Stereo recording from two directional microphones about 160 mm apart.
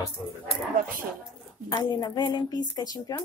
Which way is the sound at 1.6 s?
25° left (ahead or behind).